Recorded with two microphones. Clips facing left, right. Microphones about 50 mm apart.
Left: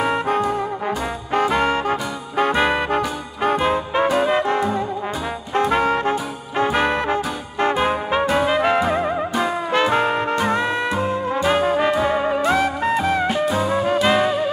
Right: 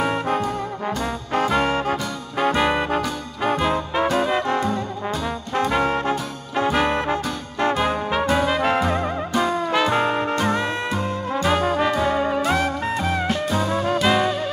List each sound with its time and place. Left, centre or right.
0.0 s brass instrument: centre
9.8 s music: centre